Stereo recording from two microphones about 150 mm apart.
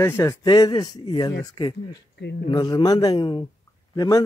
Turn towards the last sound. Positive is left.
turn(degrees=25)  # may be behind; listen again after turning